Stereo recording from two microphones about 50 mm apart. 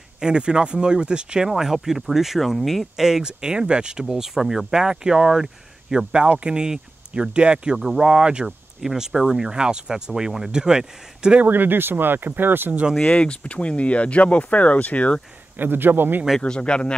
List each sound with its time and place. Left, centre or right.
0.2 s speech: centre
1.5 s speech: centre
6.2 s speech: right
11.4 s speech: right
13.1 s speech: left
15.5 s a man's voice: right
16.3 s speech: centre